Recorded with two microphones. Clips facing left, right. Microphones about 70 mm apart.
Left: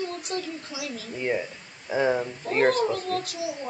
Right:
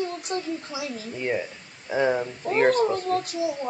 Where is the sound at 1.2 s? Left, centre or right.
Centre.